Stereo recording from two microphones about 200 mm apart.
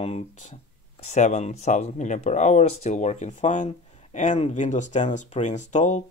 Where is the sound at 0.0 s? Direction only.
30° left (ahead or behind).